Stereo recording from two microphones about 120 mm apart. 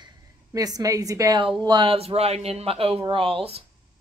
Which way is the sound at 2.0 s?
55° right (ahead or behind).